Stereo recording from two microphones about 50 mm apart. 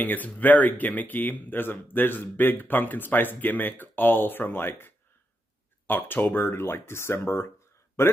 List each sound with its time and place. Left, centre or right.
0.0 s speech: left